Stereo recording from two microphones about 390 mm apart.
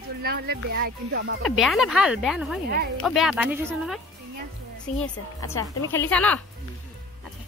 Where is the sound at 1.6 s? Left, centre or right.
Centre.